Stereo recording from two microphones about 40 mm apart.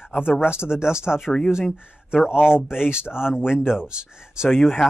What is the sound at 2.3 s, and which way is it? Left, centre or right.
Speech, left.